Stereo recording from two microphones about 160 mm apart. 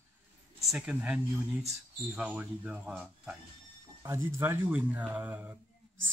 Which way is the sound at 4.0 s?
15° right (ahead or behind).